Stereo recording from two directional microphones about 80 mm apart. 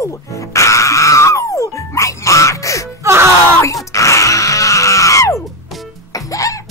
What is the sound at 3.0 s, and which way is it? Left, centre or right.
Groan, right.